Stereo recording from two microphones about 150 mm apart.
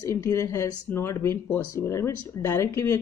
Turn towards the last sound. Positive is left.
turn(degrees=20)  # may be behind; listen again after turning